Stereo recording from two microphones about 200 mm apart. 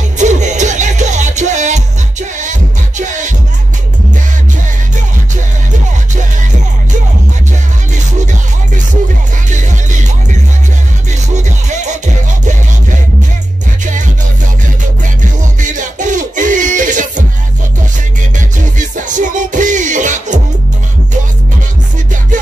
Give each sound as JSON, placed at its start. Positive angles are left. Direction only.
{"t": 0.2, "sound": "music", "side_deg": -35}
{"t": 11.3, "sound": "music", "side_deg": -35}
{"t": 15.6, "sound": "music", "side_deg": -40}
{"t": 18.8, "sound": "music", "side_deg": -40}